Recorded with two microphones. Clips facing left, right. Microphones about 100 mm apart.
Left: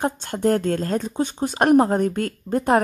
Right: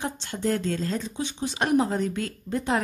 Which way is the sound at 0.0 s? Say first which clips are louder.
Left 7 dB; 50° left (ahead or behind).